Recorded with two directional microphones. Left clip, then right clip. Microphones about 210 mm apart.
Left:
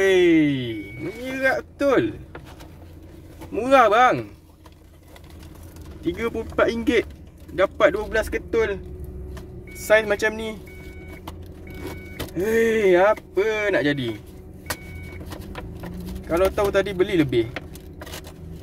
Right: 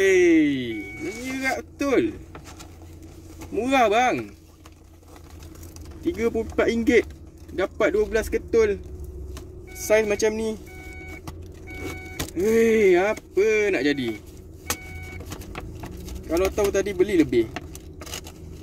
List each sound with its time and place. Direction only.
0.0 s music: 20° left (ahead or behind)
1.4 s a sound: 15° left (ahead or behind)
3.5 s speech: 20° left (ahead or behind)
6.1 s speech: 10° left (ahead or behind)
9.8 s speech: 15° left (ahead or behind)
12.4 s speech: 15° left (ahead or behind)
16.3 s speech: 15° left (ahead or behind)